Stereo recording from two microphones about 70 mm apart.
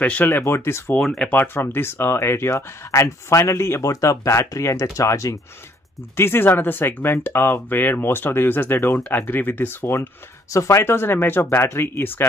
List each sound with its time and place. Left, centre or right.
0.0 s speech: left
0.5 s speech: left
3.9 s speech: left
6.1 s speech: left
10.5 s speech: left